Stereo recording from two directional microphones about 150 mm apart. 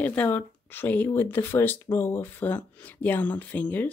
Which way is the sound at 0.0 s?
10° left (ahead or behind).